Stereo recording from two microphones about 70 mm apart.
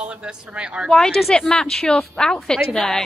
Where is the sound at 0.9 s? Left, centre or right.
Centre.